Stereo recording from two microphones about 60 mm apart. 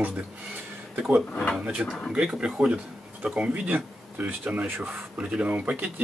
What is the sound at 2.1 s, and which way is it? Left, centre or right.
Speech, centre.